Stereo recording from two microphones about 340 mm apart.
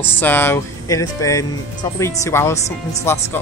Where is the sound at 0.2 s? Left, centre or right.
Centre.